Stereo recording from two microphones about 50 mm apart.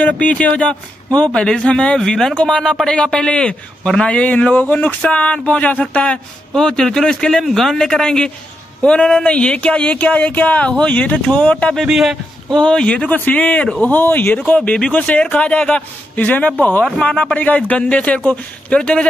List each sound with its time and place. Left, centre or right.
0.0 s a man's voice: left
6.5 s a man's voice: centre
7.4 s a man's voice: centre; by 11.1 s left
11.8 s a man's voice: centre
12.5 s a man's voice: left
13.1 s speech: left
13.6 s a man's voice: left
13.9 s speech: left
14.4 s a man's voice: left